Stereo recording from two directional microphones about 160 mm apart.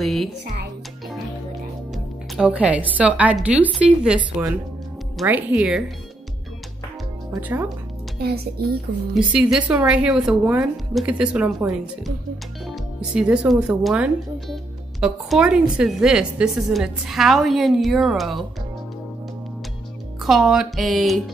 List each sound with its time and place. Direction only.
0.0 s music: centre (ahead or behind)
2.3 s a woman's voice: 5° right (ahead or behind)
5.2 s a woman's voice: 10° right (ahead or behind)
7.3 s a woman's voice: 15° right (ahead or behind)
8.2 s a child's voice: 75° right (ahead or behind)
9.1 s a woman's voice: 5° right (ahead or behind)
12.6 s speech: 5° right (ahead or behind)
20.2 s speech: centre (ahead or behind)